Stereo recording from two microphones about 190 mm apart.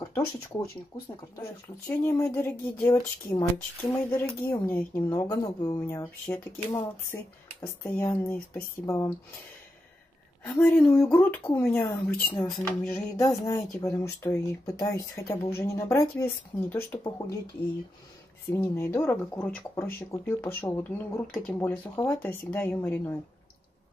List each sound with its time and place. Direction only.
0.1 s speech: 15° left (ahead or behind)
1.9 s speech: 15° left (ahead or behind)
4.0 s speech: 10° left (ahead or behind)
10.4 s speech: 10° left (ahead or behind)
18.5 s speech: 10° left (ahead or behind)
21.5 s speech: 15° left (ahead or behind)